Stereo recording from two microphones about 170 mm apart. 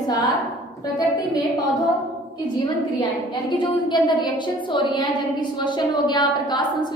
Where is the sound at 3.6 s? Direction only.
25° left (ahead or behind).